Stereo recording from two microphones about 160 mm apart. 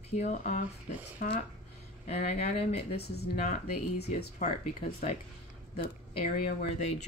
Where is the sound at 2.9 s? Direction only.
90° left.